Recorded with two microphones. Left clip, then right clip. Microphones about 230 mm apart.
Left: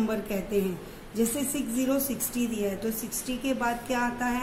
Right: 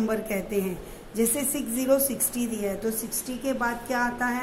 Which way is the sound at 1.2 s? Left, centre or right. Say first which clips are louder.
Right 2 dB; centre.